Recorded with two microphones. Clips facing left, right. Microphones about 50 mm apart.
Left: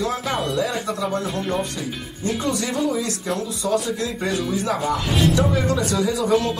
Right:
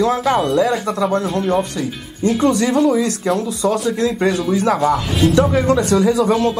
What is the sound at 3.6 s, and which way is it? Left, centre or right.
A man's voice, right.